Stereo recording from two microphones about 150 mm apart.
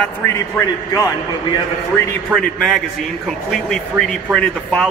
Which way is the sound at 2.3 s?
Centre (ahead or behind).